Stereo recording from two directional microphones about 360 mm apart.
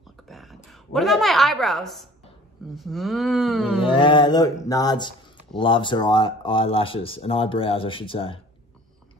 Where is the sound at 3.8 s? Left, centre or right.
Centre.